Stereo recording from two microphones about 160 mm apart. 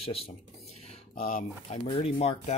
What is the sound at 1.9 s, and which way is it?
Speech, 40° left (ahead or behind).